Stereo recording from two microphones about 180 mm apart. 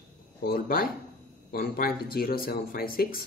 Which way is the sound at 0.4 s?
55° left (ahead or behind).